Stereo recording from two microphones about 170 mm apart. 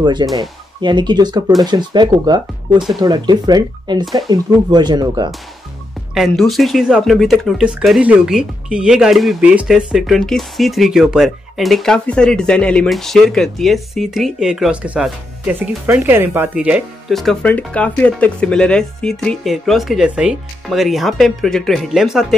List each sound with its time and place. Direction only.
0.0 s speech: 25° right (ahead or behind)
6.1 s speech: centre (ahead or behind)